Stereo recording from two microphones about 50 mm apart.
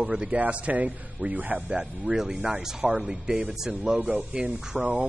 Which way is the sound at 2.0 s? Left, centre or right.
Centre.